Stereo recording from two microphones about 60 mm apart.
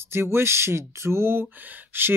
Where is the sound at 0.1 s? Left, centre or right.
Right.